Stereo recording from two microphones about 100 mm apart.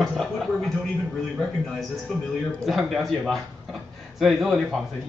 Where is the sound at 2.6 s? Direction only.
Centre (ahead or behind).